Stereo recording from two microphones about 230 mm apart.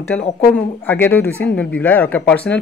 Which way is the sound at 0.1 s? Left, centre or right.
Centre.